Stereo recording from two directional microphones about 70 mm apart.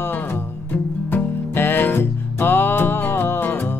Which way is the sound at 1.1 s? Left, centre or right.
Left.